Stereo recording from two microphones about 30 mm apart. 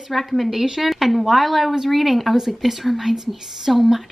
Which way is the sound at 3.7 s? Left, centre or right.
Centre.